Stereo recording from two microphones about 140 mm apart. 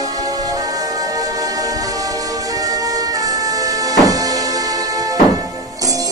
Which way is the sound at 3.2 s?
25° right (ahead or behind).